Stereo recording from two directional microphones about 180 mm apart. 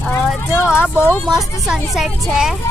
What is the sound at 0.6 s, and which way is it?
Speech, 15° left (ahead or behind).